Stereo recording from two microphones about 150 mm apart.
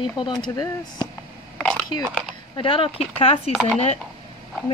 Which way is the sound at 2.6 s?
35° left (ahead or behind).